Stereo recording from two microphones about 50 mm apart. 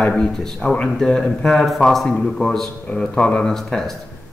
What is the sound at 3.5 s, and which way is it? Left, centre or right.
Speech, centre.